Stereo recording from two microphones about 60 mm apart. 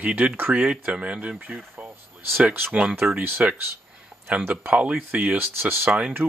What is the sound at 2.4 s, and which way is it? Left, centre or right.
Speech, right.